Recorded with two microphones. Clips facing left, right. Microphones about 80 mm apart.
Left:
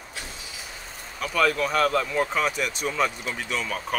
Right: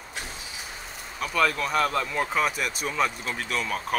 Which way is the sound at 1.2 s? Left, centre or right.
Centre.